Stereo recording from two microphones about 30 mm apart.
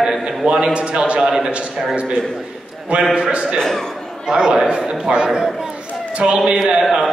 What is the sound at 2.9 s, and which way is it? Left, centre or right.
Speech, right.